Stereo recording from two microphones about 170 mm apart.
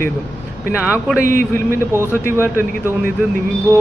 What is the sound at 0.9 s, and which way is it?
Speech, 5° right (ahead or behind).